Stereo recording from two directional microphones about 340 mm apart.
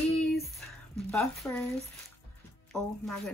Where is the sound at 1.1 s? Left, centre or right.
Centre.